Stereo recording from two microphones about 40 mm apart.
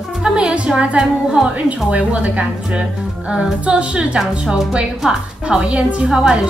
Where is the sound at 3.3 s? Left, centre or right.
Right.